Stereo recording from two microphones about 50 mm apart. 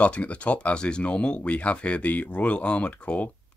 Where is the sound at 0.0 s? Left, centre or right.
Left.